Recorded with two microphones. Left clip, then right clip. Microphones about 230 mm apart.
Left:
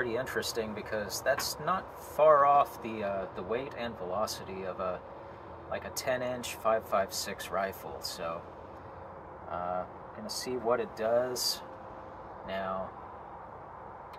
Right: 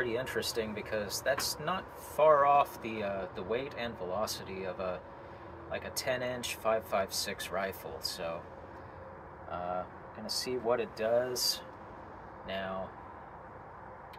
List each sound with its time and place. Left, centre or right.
0.0 s speech: centre
9.5 s speech: centre
12.4 s speech: centre